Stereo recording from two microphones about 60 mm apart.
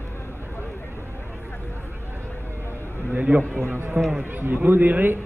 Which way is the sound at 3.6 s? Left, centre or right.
Right.